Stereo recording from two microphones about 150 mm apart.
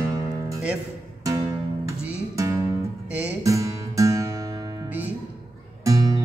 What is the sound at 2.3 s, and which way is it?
Music, 20° right (ahead or behind).